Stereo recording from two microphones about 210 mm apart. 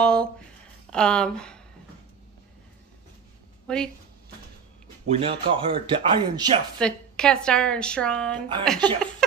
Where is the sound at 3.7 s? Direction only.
5° left (ahead or behind).